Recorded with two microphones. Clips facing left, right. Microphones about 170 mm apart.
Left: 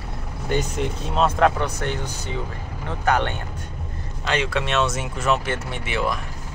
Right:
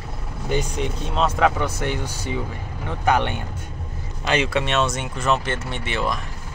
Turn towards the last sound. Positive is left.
turn(degrees=10)  # may be behind; listen again after turning